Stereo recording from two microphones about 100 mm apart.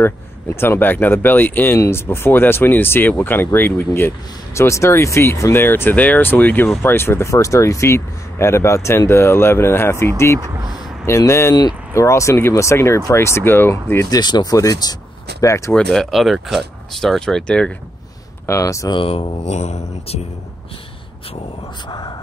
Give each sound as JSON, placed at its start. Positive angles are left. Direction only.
{"t": 0.0, "sound": "speech", "side_deg": 25}
{"t": 14.1, "sound": "speech", "side_deg": 45}
{"t": 15.7, "sound": "speech", "side_deg": 5}
{"t": 18.5, "sound": "speech", "side_deg": 30}
{"t": 19.0, "sound": "speech", "side_deg": 85}
{"t": 21.8, "sound": "speech", "side_deg": 45}